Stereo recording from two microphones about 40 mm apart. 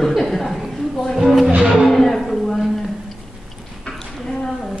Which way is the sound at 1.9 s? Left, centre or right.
Centre.